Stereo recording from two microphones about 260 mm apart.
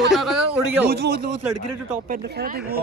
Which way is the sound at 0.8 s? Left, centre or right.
Right.